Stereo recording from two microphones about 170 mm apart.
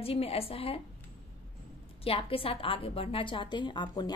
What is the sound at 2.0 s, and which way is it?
A woman's voice, 35° left (ahead or behind).